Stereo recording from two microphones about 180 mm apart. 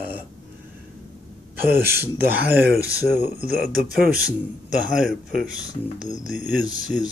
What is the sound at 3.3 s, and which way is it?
Speech, 55° right (ahead or behind).